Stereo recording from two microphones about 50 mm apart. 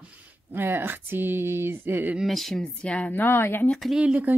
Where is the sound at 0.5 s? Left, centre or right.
Right.